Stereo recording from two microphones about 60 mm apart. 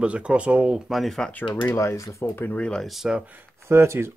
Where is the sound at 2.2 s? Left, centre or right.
Left.